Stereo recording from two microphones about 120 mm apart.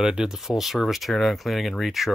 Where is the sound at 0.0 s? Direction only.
5° right (ahead or behind).